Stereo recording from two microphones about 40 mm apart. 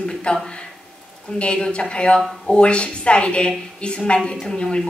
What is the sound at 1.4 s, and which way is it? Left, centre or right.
A woman's voice, left.